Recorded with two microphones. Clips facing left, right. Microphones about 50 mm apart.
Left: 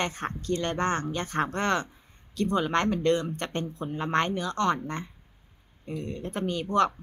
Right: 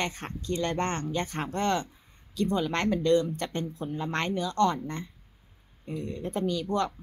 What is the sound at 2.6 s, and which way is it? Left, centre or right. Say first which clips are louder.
Speech: left 3 dB; left.